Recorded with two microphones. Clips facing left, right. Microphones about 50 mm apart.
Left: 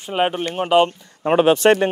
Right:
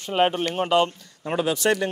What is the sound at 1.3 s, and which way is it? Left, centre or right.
Speech, left.